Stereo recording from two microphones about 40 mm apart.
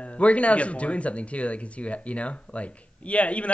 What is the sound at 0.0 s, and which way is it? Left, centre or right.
Speech, left.